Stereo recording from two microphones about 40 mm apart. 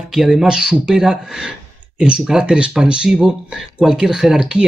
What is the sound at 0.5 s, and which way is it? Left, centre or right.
Speech, centre.